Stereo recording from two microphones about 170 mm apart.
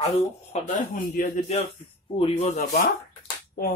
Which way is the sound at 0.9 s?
50° left (ahead or behind).